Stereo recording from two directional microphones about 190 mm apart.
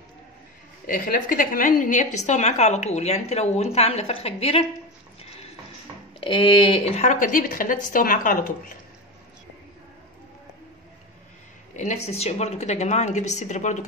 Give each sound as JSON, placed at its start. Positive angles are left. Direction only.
{"t": 0.8, "sound": "a woman's voice", "side_deg": 45}
{"t": 6.2, "sound": "a woman's voice", "side_deg": 25}
{"t": 11.7, "sound": "a woman's voice", "side_deg": 40}